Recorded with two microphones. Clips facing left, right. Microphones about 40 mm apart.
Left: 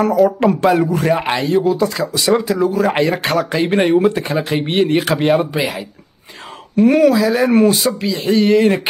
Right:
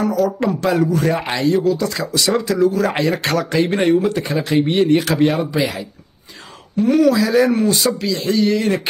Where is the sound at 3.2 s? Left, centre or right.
Centre.